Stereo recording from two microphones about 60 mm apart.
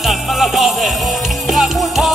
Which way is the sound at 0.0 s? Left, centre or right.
Centre.